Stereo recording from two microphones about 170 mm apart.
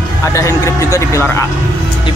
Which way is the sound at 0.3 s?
15° left (ahead or behind).